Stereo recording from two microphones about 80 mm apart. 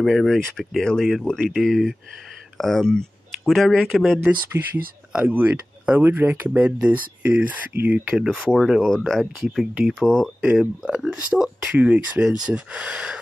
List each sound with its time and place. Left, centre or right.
0.0 s speech: centre
4.6 s speech: centre
8.1 s speech: centre
8.8 s speech: centre
10.4 s speech: centre